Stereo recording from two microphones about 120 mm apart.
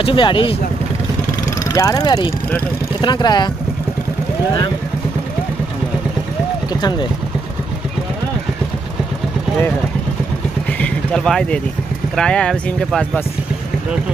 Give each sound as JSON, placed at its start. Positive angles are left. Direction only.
{"t": 0.0, "sound": "speech", "side_deg": 45}
{"t": 1.7, "sound": "speech", "side_deg": 30}
{"t": 6.7, "sound": "speech", "side_deg": 35}
{"t": 10.8, "sound": "vehicle", "side_deg": 10}
{"t": 12.2, "sound": "speech", "side_deg": 5}